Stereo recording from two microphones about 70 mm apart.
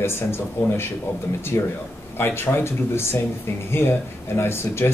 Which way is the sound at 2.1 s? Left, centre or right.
Left.